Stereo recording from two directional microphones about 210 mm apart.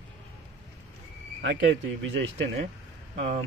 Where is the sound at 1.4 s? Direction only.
60° right (ahead or behind).